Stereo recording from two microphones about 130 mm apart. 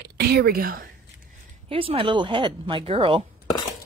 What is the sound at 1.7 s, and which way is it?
A woman's voice, 45° right (ahead or behind).